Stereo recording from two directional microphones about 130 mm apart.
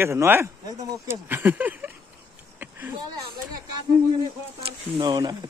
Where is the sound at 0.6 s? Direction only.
25° right (ahead or behind).